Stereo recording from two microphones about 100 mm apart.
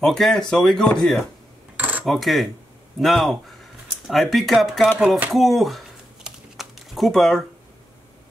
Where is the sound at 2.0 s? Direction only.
Centre (ahead or behind).